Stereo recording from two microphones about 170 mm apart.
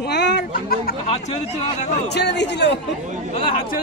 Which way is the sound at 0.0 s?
85° left.